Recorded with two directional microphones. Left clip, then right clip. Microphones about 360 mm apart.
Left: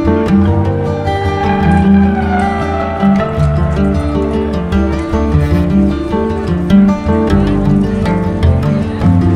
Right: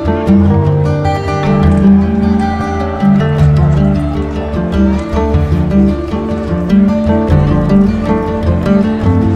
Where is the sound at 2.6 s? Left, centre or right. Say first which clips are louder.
Left 1 dB; centre.